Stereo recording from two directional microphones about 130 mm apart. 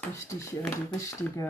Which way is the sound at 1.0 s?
25° left (ahead or behind).